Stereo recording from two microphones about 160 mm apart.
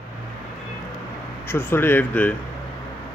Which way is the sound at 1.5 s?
15° left (ahead or behind).